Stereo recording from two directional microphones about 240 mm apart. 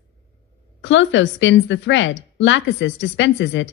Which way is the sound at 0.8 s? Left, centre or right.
Left.